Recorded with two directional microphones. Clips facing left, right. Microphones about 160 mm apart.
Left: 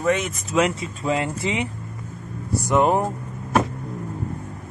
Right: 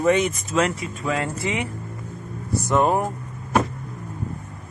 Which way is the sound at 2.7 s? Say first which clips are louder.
Left 1 dB; 20° left (ahead or behind).